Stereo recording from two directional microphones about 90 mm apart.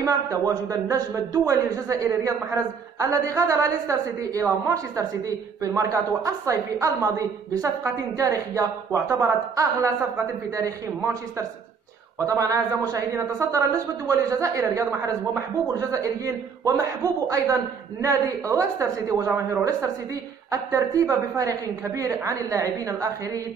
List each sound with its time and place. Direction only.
0.7 s a woman's voice: 40° right (ahead or behind)
16.6 s a woman's voice: 40° right (ahead or behind)